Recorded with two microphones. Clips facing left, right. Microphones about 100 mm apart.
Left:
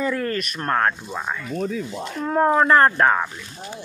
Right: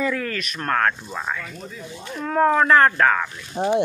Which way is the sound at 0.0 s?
30° left (ahead or behind).